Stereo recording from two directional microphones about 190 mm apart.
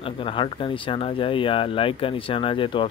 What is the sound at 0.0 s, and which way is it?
Speech, 25° left (ahead or behind).